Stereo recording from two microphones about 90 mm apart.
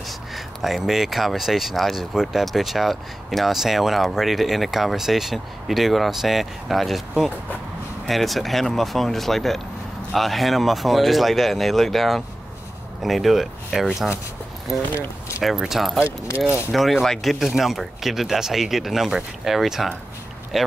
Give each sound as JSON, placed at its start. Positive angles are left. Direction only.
{"t": 0.6, "sound": "speech", "side_deg": 0}
{"t": 15.0, "sound": "speech", "side_deg": 30}
{"t": 15.4, "sound": "speech", "side_deg": -5}